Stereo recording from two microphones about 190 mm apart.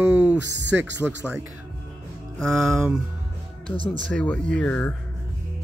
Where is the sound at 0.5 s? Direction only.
70° right (ahead or behind).